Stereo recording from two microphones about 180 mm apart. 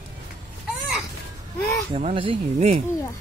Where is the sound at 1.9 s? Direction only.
30° right (ahead or behind).